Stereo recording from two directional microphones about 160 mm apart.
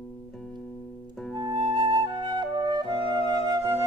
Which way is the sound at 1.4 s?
30° right (ahead or behind).